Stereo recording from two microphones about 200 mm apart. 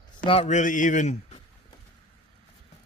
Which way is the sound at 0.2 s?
30° left (ahead or behind).